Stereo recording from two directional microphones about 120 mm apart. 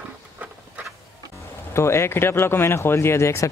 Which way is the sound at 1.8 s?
20° left (ahead or behind).